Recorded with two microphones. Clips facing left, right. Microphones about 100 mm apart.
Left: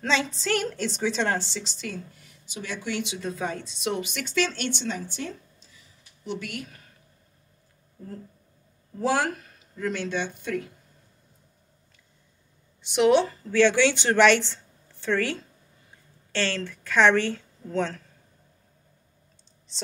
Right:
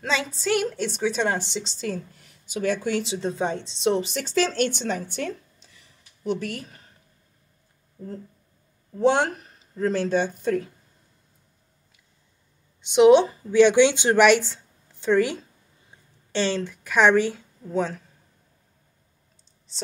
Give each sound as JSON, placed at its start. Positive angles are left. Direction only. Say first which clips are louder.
{"t": 0.0, "sound": "a woman's voice", "louder": "even", "side_deg": -5}
{"t": 1.4, "sound": "speech", "louder": "right 5 dB", "side_deg": -25}
{"t": 6.2, "sound": "speech", "louder": "right 6 dB", "side_deg": -40}
{"t": 9.0, "sound": "speech", "louder": "right 4 dB", "side_deg": -25}
{"t": 12.8, "sound": "a woman's voice", "louder": "right 5 dB", "side_deg": -20}